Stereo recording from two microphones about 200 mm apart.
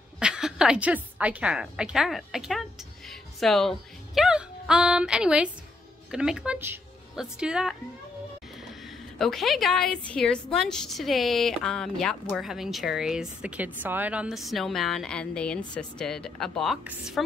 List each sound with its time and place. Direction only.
0.2 s a woman's voice: 5° right (ahead or behind)
9.2 s a woman's voice: centre (ahead or behind)